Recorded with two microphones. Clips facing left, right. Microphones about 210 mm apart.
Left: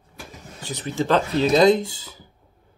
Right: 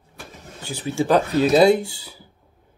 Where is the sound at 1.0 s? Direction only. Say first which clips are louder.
Right 2 dB; 10° right (ahead or behind).